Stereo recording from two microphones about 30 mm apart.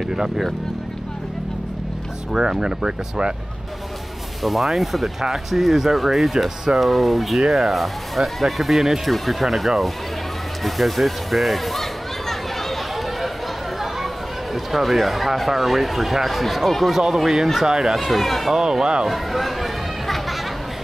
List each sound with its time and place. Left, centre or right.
0.1 s speech: centre
2.3 s speech: right
4.4 s speech: centre
10.6 s children playing: centre
14.5 s speech: centre
16.9 s speech: centre
17.9 s speech: centre
18.5 s speech: centre
19.0 s a sound: centre